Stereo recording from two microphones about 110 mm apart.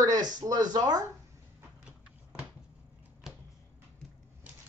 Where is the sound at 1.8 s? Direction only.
5° right (ahead or behind).